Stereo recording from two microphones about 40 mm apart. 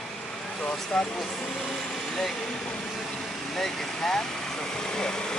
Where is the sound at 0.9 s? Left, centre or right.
Centre.